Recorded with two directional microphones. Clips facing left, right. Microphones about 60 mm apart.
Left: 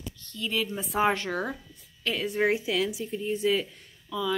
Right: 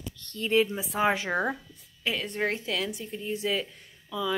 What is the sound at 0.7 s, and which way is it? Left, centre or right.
Speech, centre.